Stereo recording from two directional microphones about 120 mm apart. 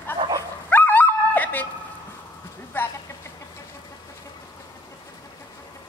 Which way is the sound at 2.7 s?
15° left (ahead or behind).